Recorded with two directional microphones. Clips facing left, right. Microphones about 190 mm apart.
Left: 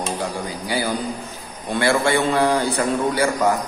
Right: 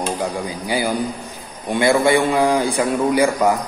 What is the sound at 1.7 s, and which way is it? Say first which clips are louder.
A man's voice: right 4 dB; 15° right (ahead or behind).